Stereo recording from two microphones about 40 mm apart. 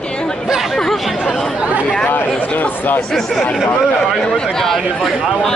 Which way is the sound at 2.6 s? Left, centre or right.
Left.